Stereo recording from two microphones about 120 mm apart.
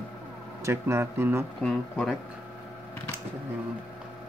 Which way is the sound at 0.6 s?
20° right (ahead or behind).